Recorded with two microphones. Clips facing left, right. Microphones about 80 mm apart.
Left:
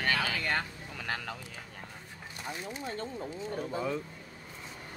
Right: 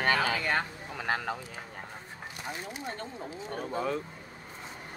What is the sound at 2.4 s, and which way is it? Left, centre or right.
Speech, centre.